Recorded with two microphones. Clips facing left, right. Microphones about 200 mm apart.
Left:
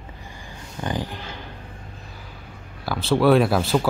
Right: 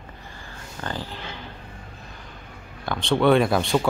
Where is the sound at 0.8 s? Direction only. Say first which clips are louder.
Left 5 dB; 15° left (ahead or behind).